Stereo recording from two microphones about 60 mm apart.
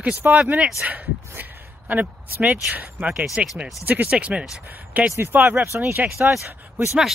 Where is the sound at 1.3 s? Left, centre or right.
Right.